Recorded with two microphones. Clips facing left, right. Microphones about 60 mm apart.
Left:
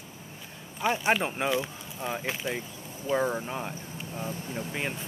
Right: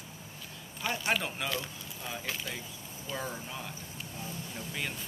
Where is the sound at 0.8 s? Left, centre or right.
Left.